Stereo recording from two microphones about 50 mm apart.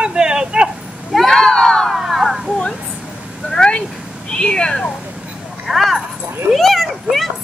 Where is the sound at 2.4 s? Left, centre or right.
Centre.